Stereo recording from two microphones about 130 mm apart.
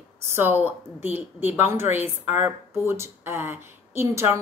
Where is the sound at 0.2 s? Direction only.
15° right (ahead or behind).